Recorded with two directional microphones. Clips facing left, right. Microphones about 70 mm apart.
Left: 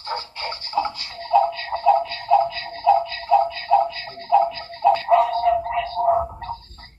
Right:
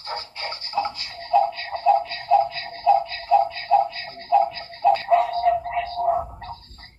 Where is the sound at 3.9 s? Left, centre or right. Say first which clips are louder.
Left 2 dB; right.